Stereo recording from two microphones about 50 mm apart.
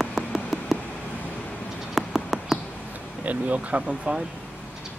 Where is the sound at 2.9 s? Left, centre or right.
Right.